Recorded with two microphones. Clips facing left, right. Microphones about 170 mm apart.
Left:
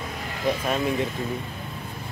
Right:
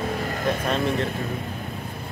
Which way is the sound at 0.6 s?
5° left (ahead or behind).